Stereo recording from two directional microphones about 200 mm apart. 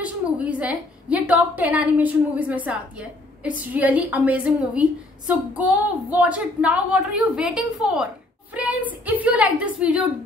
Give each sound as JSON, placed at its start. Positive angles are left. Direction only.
{"t": 0.0, "sound": "a woman's voice", "side_deg": -5}